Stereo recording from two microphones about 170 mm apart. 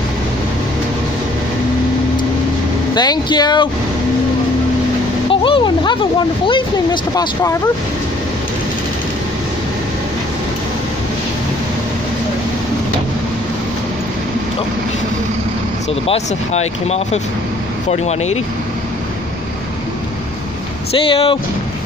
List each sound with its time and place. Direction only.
2.9 s speech: 25° left (ahead or behind)
5.3 s a sound: 30° left (ahead or behind)
6.4 s speech: 30° left (ahead or behind)
15.9 s speech: 40° left (ahead or behind)
21.1 s speech: 30° left (ahead or behind)